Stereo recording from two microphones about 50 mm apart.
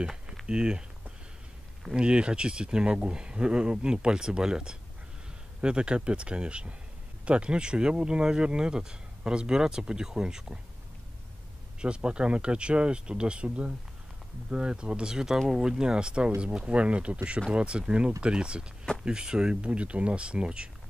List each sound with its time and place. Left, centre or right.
0.0 s a sound: centre
0.5 s speech: centre
11.8 s speech: centre